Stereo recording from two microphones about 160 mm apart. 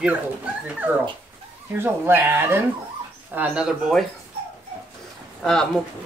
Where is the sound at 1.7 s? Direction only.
15° right (ahead or behind).